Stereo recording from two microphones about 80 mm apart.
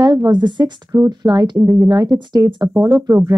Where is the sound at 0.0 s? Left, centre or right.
Right.